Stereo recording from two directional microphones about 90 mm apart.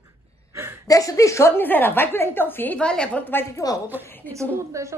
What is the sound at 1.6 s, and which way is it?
A woman's voice, 20° left (ahead or behind).